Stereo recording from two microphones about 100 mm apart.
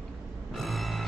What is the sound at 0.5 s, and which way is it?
Music, centre (ahead or behind).